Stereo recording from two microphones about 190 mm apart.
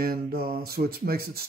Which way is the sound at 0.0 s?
55° right (ahead or behind).